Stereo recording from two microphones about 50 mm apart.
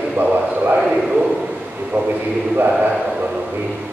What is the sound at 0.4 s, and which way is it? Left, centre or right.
Speech, right.